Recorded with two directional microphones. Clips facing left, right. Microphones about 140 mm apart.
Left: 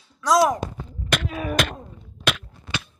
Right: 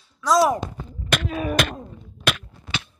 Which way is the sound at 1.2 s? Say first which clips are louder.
Right 3 dB; 30° right (ahead or behind).